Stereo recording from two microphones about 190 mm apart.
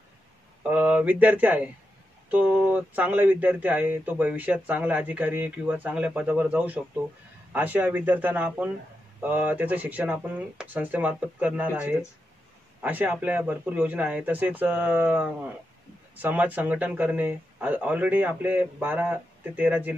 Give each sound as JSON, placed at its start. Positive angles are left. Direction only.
{"t": 0.7, "sound": "speech", "side_deg": -10}